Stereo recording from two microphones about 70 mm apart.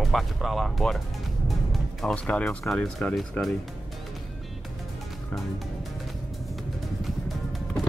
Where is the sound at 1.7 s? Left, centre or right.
Centre.